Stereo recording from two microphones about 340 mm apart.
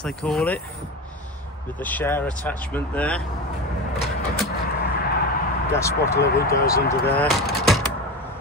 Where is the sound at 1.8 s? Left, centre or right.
Centre.